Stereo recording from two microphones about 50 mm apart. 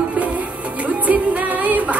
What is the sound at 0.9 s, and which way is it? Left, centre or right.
Music, right.